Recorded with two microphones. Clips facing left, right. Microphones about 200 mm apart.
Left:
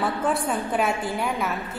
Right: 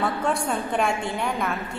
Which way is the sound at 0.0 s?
Centre (ahead or behind).